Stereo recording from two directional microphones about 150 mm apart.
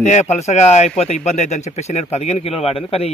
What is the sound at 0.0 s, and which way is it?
A man's voice, 50° left (ahead or behind).